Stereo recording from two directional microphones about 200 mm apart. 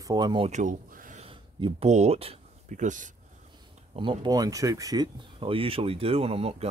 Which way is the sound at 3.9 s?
25° right (ahead or behind).